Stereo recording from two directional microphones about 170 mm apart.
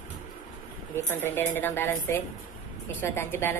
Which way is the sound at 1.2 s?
10° left (ahead or behind).